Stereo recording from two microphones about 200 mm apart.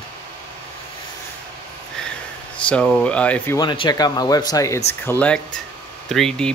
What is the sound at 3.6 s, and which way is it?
Speech, 20° left (ahead or behind).